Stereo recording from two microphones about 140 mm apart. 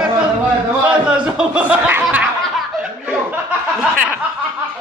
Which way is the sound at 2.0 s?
5° right (ahead or behind).